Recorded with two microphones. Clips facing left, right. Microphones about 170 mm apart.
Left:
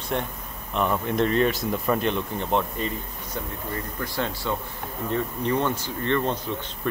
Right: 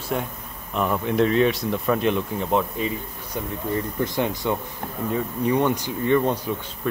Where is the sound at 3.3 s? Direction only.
15° right (ahead or behind).